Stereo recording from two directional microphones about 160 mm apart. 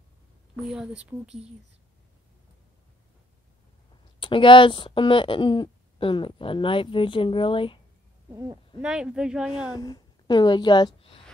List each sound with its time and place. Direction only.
0.7 s speech: 5° right (ahead or behind)
4.2 s speech: 30° left (ahead or behind)
8.3 s speech: 20° right (ahead or behind)
8.8 s speech: 5° right (ahead or behind)
9.7 s a woman's voice: 25° left (ahead or behind)